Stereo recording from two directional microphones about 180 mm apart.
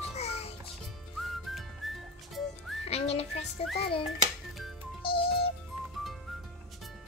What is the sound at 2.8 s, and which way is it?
Music, 35° left (ahead or behind).